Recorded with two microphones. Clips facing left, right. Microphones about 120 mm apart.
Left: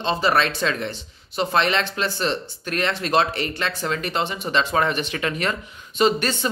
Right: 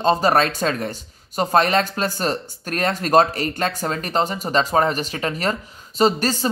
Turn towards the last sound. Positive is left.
turn(degrees=-35)  # may be behind; listen again after turning